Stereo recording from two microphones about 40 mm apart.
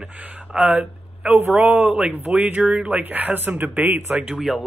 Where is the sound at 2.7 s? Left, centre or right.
Right.